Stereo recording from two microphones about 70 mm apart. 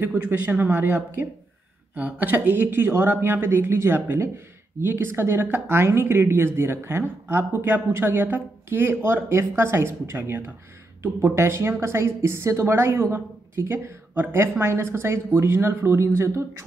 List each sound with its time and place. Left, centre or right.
0.0 s speech: right